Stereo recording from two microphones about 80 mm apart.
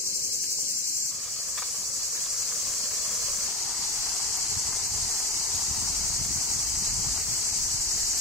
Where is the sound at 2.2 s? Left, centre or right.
Centre.